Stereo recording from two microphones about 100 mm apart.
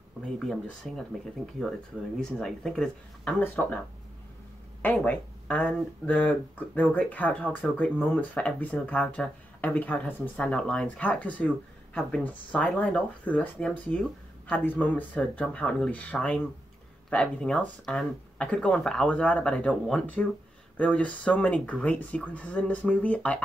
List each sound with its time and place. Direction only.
0.2 s speech: 5° left (ahead or behind)
5.0 s speech: 15° left (ahead or behind)
12.6 s speech: 5° left (ahead or behind)